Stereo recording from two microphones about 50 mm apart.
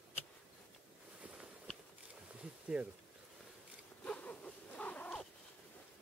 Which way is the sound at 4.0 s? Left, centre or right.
Left.